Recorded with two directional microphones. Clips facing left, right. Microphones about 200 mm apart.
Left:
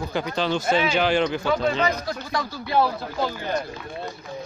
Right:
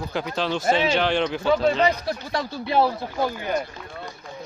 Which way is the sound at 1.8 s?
30° right (ahead or behind).